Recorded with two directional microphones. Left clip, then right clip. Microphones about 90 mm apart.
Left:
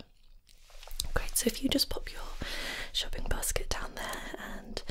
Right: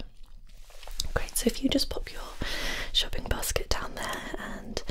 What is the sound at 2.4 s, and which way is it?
Speech, 35° right (ahead or behind).